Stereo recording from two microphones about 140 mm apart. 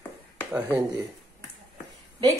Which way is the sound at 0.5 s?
15° right (ahead or behind).